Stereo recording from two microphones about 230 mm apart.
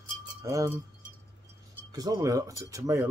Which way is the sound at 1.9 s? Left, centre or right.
Centre.